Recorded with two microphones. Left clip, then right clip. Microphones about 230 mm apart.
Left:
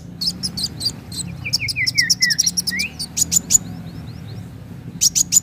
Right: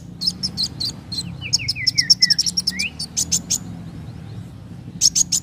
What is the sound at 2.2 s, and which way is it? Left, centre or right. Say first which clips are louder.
Chirp: even; left.